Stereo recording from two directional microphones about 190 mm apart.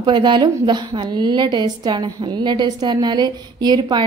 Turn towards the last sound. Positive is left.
turn(degrees=-20)  # may be behind; listen again after turning